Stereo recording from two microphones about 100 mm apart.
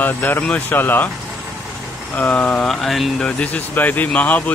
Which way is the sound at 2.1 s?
15° left (ahead or behind).